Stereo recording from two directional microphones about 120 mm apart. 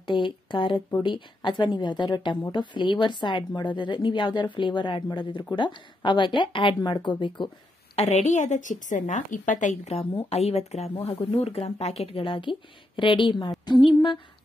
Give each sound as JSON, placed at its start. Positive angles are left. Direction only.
{"t": 0.0, "sound": "a woman's voice", "side_deg": 40}
{"t": 10.1, "sound": "speech", "side_deg": 60}